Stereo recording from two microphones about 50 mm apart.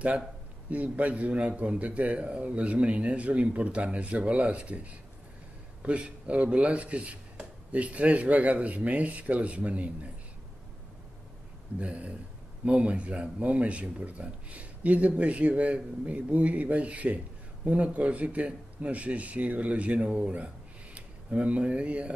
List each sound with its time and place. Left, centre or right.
0.7 s speech: right
11.8 s speech: right